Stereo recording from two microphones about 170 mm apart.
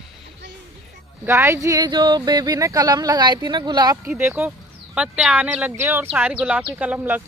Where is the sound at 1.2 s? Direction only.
15° right (ahead or behind).